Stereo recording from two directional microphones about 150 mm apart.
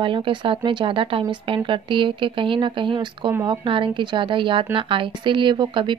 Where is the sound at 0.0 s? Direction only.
30° right (ahead or behind).